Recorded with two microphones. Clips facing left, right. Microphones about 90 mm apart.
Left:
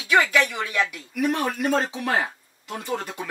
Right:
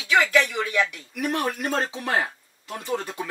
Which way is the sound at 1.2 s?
20° left (ahead or behind).